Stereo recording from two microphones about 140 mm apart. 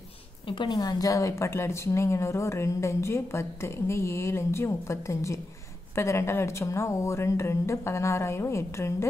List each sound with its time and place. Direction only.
0.5 s a woman's voice: 30° left (ahead or behind)